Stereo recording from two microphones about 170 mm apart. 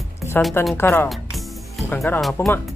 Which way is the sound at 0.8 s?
15° left (ahead or behind).